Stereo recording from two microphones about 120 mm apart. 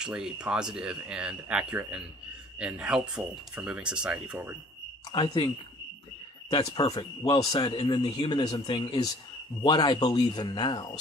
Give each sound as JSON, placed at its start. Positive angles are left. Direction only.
{"t": 0.0, "sound": "speech", "side_deg": -5}
{"t": 5.1, "sound": "speech", "side_deg": 40}
{"t": 6.5, "sound": "speech", "side_deg": 40}